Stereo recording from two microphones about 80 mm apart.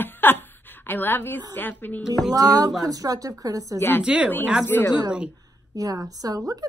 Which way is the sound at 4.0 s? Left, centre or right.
Centre.